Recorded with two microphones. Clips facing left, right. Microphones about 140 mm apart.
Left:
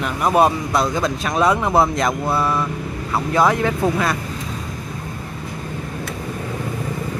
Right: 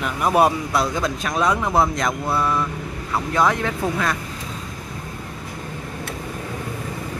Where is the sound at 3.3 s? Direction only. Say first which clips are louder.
Left 3 dB; 10° left (ahead or behind).